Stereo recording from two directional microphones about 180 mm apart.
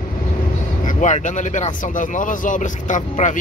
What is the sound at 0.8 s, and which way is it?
A man's voice, 45° left (ahead or behind).